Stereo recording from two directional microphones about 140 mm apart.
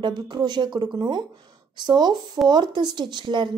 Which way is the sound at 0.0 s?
35° right (ahead or behind).